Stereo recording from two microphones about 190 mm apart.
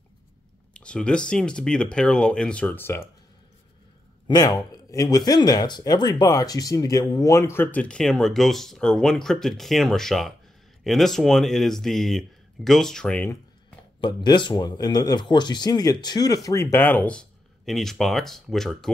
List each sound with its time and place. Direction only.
0.7 s speech: 5° left (ahead or behind)
4.3 s speech: 20° left (ahead or behind)
14.0 s speech: 25° left (ahead or behind); by 18.9 s centre (ahead or behind)